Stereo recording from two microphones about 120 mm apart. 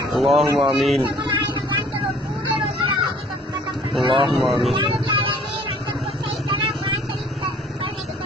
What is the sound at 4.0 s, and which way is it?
Speech, 45° right (ahead or behind).